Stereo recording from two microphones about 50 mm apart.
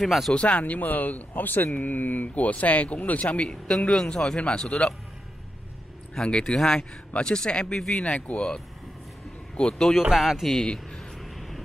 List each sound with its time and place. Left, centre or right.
0.0 s a man's voice: centre
0.3 s speech: left
6.2 s speech: centre
9.6 s speech: centre
10.1 s a man's voice: centre
10.7 s vehicle: centre
11.1 s vehicle: centre